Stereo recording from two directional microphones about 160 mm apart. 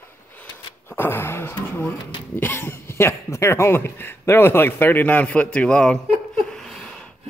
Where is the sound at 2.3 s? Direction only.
15° left (ahead or behind).